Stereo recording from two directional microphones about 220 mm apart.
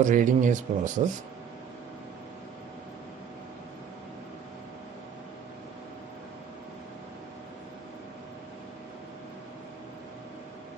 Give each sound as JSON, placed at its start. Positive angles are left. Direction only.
{"t": 0.0, "sound": "speech", "side_deg": -35}